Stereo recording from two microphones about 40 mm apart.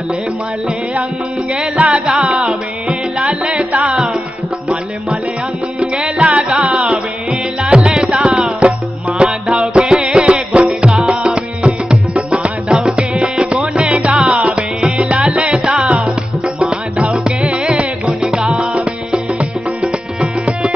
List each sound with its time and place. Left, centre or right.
1.8 s music: right
5.8 s music: centre
17.0 s music: right
19.8 s music: right